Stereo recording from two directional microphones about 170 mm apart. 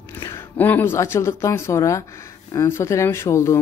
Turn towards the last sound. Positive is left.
turn(degrees=15)  # may be behind; listen again after turning